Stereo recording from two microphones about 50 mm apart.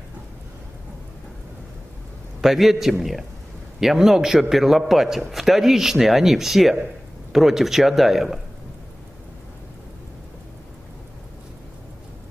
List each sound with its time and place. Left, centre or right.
2.4 s speech: centre